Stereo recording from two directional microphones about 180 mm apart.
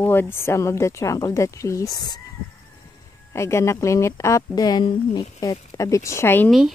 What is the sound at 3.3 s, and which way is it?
Speech, 15° left (ahead or behind).